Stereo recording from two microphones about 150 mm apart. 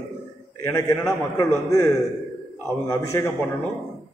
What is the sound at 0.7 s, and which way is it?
A man's voice, 20° left (ahead or behind).